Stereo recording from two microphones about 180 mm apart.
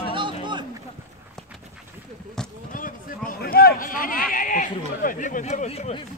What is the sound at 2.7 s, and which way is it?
Speech, 50° left (ahead or behind).